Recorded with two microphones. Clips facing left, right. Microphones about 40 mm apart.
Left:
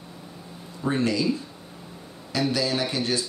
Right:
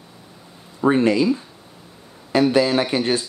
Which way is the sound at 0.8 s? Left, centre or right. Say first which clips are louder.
Right 8 dB; right.